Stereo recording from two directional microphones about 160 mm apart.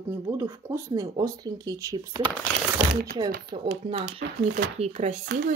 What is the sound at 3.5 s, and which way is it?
Speech, 35° right (ahead or behind).